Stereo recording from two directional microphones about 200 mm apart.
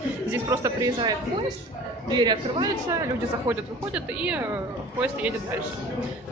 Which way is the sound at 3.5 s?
5° right (ahead or behind).